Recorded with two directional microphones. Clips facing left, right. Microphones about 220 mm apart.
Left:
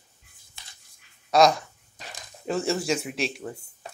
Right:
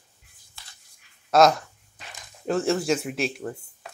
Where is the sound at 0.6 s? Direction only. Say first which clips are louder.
Even; 20° left (ahead or behind).